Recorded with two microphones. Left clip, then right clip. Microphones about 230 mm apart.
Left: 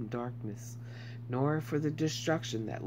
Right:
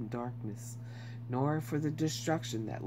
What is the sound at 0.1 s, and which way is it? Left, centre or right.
Speech, centre.